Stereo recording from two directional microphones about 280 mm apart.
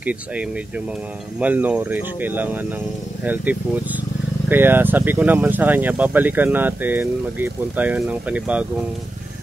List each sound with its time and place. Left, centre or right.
0.0 s speech: centre